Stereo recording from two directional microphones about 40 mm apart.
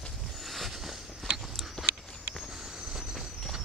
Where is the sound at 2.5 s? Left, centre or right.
Centre.